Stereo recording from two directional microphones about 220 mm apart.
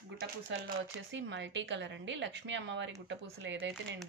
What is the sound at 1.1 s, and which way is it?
A woman's voice, 55° right (ahead or behind).